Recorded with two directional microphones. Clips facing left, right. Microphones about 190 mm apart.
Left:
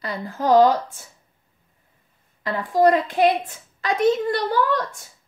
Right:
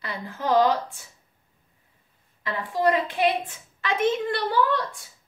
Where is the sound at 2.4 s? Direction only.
40° left (ahead or behind).